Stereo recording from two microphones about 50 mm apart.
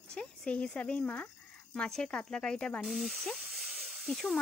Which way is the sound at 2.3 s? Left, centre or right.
Centre.